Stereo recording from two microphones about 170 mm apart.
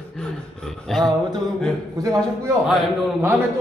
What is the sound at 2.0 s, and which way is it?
Speech, 20° right (ahead or behind).